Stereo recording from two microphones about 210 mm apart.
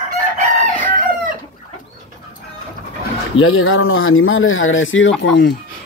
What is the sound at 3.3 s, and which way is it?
Speech, 75° left (ahead or behind).